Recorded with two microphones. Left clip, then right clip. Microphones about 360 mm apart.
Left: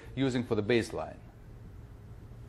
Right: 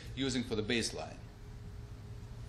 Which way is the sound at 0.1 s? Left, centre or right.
Left.